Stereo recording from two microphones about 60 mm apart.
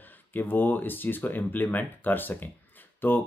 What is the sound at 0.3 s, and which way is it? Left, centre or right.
Speech, left.